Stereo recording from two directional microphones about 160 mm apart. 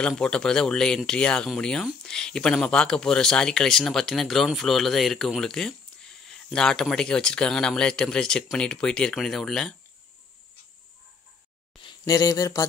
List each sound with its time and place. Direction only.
0.0 s speech: 5° left (ahead or behind)
12.0 s speech: 20° left (ahead or behind)